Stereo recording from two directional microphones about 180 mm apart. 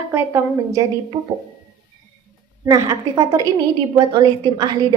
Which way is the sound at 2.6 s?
20° right (ahead or behind).